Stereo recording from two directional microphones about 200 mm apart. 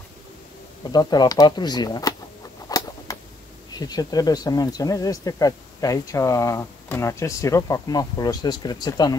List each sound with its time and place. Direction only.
0.8 s speech: 20° left (ahead or behind)
2.7 s a sound: 20° left (ahead or behind)
3.1 s vehicle: 15° left (ahead or behind)
3.7 s speech: 20° left (ahead or behind)